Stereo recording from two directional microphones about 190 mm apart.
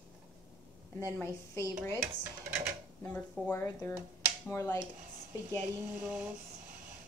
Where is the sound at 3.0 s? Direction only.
10° left (ahead or behind).